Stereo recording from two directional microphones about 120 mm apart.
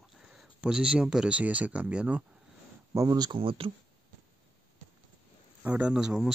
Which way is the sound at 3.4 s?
50° right (ahead or behind).